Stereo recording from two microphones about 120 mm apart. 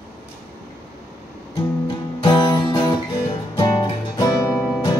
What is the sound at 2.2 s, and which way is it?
Music, 40° left (ahead or behind).